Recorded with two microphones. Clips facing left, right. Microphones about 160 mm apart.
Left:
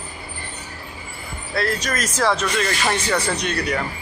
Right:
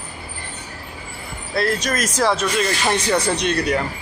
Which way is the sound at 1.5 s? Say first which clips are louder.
Right 2 dB; 20° right (ahead or behind).